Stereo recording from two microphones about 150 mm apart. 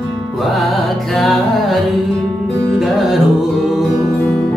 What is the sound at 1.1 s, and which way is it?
Music, centre (ahead or behind).